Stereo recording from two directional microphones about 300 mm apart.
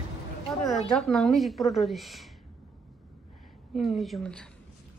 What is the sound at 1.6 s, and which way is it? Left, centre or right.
Speech, centre.